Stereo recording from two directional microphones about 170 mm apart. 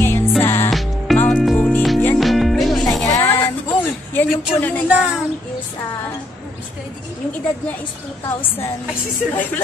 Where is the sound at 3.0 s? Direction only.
15° left (ahead or behind).